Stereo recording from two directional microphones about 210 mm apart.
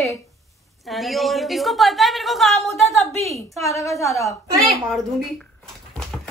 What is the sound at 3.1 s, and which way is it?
Speech, 30° right (ahead or behind).